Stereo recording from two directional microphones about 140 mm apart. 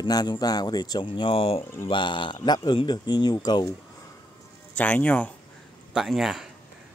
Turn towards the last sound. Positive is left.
turn(degrees=0)  # may be behind; listen again after turning